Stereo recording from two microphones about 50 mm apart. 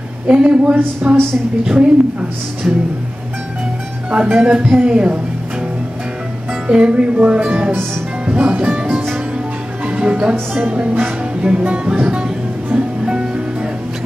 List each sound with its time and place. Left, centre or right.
0.3 s speech: right
4.1 s speech: right
6.7 s speech: right
9.8 s music: right
10.7 s speech: right
12.7 s music: centre